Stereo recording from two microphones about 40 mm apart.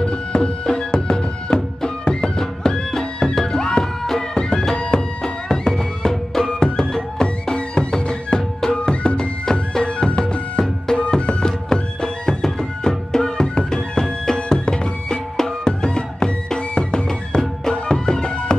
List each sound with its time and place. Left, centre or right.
0.0 s music: left
7.5 s music: left
7.9 s music: centre
8.7 s music: left
9.1 s music: centre
9.8 s music: left